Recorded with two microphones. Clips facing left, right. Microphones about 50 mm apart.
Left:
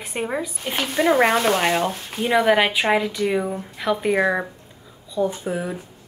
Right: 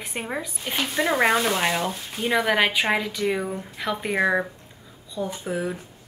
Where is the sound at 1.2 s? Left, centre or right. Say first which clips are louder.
Left 3 dB; left.